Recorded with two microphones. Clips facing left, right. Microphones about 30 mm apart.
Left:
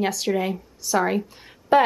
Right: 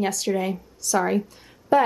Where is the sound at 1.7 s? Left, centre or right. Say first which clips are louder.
Left 2 dB; left.